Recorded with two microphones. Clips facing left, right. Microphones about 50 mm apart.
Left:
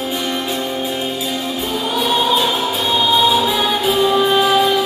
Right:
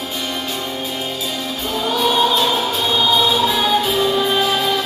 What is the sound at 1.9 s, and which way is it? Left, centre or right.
Music, centre.